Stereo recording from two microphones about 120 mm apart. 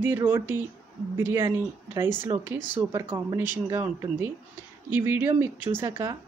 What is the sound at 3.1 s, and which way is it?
Speech, 30° right (ahead or behind).